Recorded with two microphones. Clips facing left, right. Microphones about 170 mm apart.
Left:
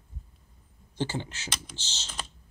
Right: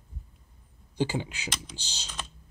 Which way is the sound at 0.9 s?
15° right (ahead or behind).